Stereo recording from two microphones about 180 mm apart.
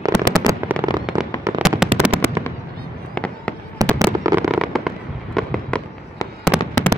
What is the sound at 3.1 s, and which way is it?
Fireworks, 5° left (ahead or behind).